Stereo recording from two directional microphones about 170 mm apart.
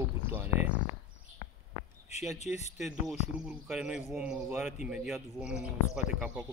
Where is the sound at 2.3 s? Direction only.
40° left (ahead or behind).